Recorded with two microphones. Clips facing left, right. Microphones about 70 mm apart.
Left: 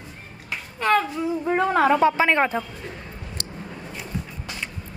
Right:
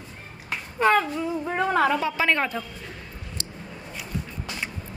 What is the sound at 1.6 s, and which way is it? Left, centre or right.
Speech, centre.